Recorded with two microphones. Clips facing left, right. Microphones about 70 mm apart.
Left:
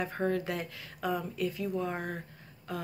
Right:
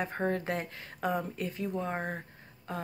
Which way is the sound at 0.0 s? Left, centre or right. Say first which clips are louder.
Even; right.